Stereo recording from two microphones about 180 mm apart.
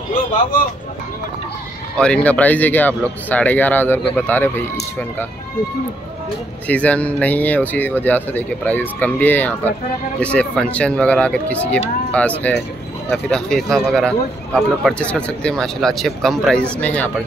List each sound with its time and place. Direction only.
0.1 s speech: 50° left (ahead or behind)
2.0 s speech: 5° left (ahead or behind)
6.7 s speech: 10° left (ahead or behind)